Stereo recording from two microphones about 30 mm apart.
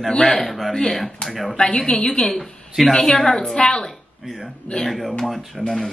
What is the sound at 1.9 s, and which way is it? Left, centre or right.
Speech, left.